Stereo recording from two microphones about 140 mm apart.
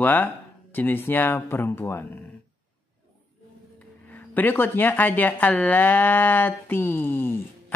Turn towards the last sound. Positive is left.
turn(degrees=15)  # may be behind; listen again after turning